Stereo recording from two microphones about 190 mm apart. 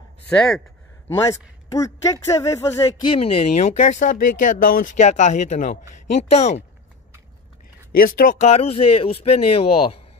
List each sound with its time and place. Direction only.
0.3 s speech: 5° left (ahead or behind)
1.0 s speech: 15° left (ahead or behind); by 6.6 s 35° left (ahead or behind)
8.0 s speech: 45° left (ahead or behind)